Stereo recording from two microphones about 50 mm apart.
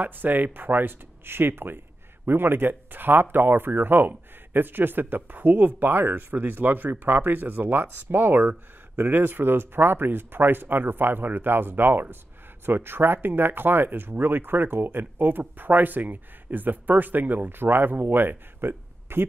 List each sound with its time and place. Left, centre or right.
0.0 s speech: right